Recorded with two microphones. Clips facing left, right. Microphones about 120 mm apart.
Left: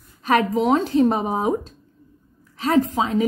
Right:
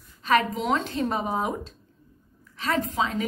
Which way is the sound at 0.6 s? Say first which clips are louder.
Left 8 dB; 35° left (ahead or behind).